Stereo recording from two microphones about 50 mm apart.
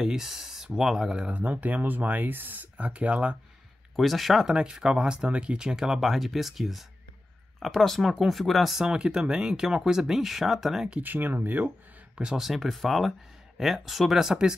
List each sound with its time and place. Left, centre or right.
0.0 s a sound: centre
0.8 s speech: centre
1.3 s speech: right
3.9 s speech: centre
4.5 s speech: centre
8.8 s speech: centre
11.0 s speech: right
12.2 s speech: centre
12.4 s speech: centre